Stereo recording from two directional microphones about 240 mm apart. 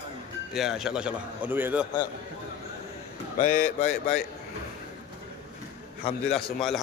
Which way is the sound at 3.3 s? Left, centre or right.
Left.